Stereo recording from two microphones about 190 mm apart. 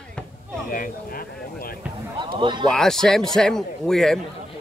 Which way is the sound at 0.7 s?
50° left (ahead or behind).